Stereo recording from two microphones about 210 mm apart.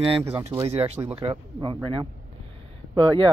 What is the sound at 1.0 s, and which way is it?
Speech, 15° right (ahead or behind).